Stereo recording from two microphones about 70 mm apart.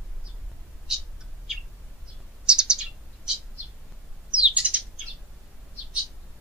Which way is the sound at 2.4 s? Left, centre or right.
Centre.